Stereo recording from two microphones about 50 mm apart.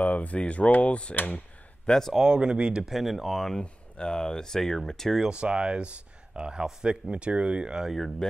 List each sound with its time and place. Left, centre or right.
0.0 s speech: left
1.1 s speech: left
1.9 s speech: centre
2.1 s speech: centre
2.8 s speech: centre
3.6 s speech: centre
5.2 s speech: centre
7.8 s speech: centre